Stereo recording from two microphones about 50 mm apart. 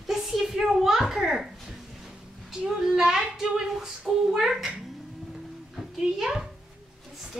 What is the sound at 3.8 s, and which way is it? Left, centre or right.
Speech, centre.